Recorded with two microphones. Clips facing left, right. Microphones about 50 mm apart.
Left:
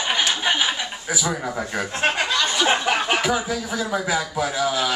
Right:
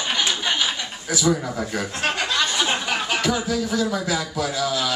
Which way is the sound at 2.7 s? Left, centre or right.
Left.